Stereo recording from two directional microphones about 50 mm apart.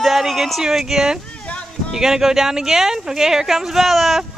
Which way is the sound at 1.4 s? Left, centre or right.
Left.